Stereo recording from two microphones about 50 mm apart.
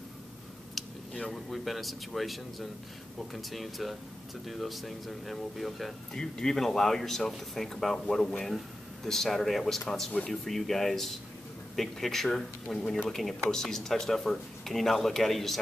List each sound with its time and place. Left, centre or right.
0.8 s a sound: centre
1.3 s speech: centre
6.1 s speech: centre